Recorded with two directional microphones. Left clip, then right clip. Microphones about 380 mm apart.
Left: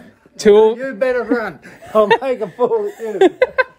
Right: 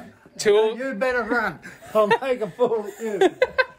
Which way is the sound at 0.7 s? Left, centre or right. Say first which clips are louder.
Left 6 dB; centre.